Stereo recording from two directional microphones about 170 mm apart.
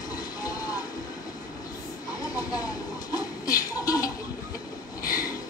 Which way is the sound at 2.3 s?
20° left (ahead or behind).